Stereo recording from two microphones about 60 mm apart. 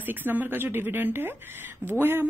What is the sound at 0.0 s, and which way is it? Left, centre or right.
Speech, right.